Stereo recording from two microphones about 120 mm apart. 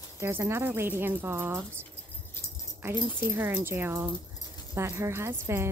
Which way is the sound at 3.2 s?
20° right (ahead or behind).